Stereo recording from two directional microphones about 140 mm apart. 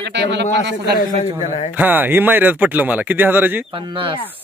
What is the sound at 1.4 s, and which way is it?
Speech, 55° left (ahead or behind).